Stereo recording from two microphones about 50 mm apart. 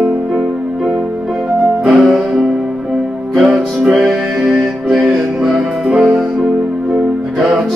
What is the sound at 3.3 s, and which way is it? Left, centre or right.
Music, centre.